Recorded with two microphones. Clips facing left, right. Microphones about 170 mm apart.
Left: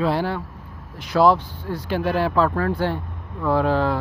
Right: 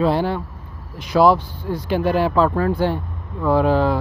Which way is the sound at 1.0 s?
10° right (ahead or behind).